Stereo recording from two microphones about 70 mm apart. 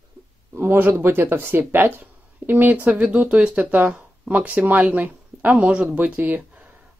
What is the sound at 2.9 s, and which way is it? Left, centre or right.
Speech, centre.